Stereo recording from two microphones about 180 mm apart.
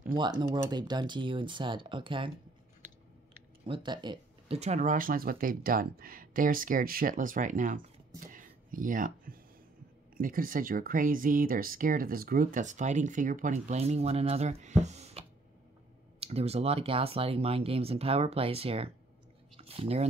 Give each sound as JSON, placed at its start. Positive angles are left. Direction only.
{"t": 0.1, "sound": "speech", "side_deg": -25}
{"t": 3.6, "sound": "speech", "side_deg": -25}
{"t": 4.6, "sound": "speech", "side_deg": -40}
{"t": 8.2, "sound": "a sound", "side_deg": -45}
{"t": 10.1, "sound": "speech", "side_deg": -50}